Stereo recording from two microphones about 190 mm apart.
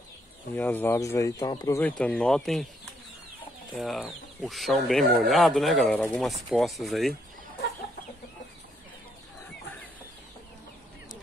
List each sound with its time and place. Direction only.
0.6 s speech: 10° left (ahead or behind)
1.8 s speech: 5° left (ahead or behind)